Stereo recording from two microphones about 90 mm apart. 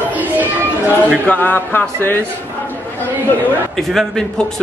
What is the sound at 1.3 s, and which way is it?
Speech, 20° left (ahead or behind).